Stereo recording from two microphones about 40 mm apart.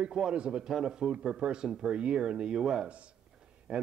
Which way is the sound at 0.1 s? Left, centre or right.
Centre.